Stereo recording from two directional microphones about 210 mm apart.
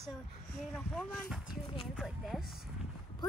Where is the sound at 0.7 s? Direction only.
5° left (ahead or behind).